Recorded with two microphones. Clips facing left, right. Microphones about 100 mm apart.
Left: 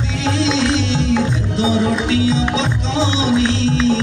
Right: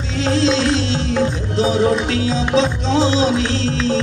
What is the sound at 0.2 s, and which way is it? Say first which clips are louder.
Music: right 2 dB; 40° right (ahead or behind).